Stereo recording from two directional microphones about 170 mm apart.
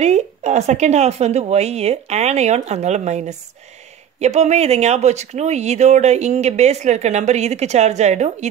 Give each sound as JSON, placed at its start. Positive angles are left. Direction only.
{"t": 0.0, "sound": "speech", "side_deg": -40}